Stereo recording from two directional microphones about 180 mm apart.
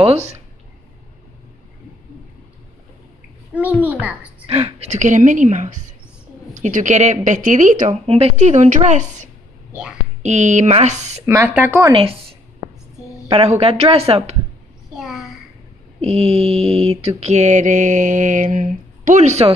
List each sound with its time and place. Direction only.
0.0 s mantra: 35° right (ahead or behind)
3.8 s a child's voice: 10° right (ahead or behind)
4.5 s speech: 35° right (ahead or behind)
10.2 s mantra: 40° right (ahead or behind)
11.2 s speech: 15° right (ahead or behind)
11.9 s mantra: 30° right (ahead or behind)
13.3 s mantra: 30° right (ahead or behind)
15.0 s a sound: centre (ahead or behind)
16.0 s mantra: 35° right (ahead or behind)
17.2 s speech: 40° right (ahead or behind)